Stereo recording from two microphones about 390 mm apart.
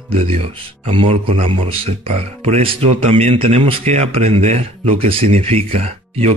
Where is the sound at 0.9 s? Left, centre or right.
Centre.